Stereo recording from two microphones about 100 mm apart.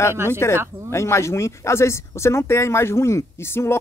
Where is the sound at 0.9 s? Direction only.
30° left (ahead or behind).